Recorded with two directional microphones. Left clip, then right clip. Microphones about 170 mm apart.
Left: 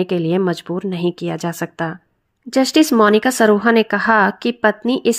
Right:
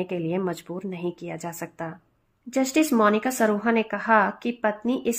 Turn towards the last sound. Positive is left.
turn(degrees=35)  # may be behind; listen again after turning